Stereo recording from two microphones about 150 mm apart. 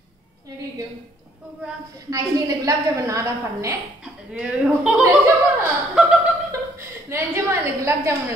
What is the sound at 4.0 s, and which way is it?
A woman's voice, 5° right (ahead or behind).